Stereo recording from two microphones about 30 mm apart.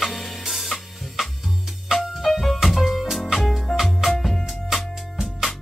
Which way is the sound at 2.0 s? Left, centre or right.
Centre.